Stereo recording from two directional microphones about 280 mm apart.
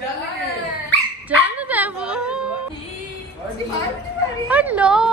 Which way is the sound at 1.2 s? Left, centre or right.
Centre.